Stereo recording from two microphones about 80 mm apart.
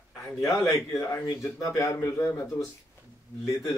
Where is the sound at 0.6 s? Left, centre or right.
Left.